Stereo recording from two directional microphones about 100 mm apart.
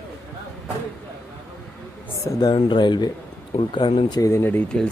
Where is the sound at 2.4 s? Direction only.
50° left (ahead or behind).